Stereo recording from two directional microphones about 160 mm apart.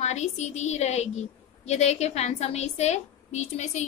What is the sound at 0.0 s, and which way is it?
A woman's voice, 45° left (ahead or behind).